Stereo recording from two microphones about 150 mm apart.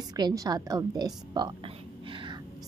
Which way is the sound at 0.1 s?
25° right (ahead or behind).